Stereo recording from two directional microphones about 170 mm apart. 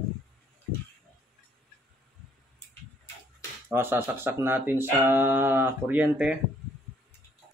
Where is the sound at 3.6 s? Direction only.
15° right (ahead or behind).